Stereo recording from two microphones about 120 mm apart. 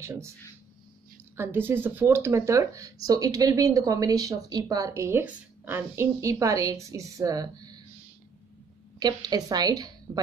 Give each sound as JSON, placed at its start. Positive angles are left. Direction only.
{"t": 0.0, "sound": "speech", "side_deg": -25}
{"t": 1.3, "sound": "speech", "side_deg": -20}
{"t": 9.0, "sound": "a woman's voice", "side_deg": -35}